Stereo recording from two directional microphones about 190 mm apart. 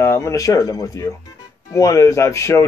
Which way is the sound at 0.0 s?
15° left (ahead or behind).